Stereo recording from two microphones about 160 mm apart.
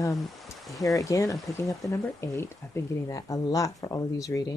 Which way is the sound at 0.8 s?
20° left (ahead or behind).